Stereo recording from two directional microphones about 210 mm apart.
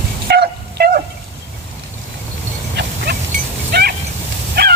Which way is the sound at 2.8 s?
55° right (ahead or behind).